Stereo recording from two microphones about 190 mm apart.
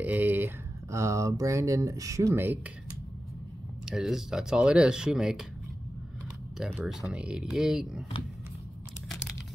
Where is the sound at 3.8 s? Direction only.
Centre (ahead or behind).